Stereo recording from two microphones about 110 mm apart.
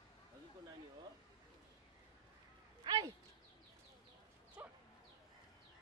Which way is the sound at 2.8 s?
40° right (ahead or behind).